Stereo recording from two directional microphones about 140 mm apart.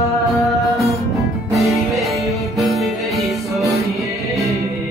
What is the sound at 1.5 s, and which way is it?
Music, centre (ahead or behind).